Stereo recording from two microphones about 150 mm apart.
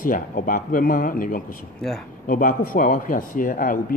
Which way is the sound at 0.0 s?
65° left (ahead or behind).